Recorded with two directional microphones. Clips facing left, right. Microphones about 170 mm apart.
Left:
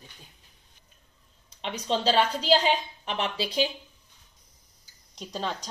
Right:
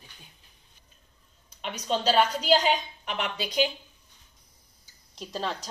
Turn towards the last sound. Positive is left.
turn(degrees=0)  # may be behind; listen again after turning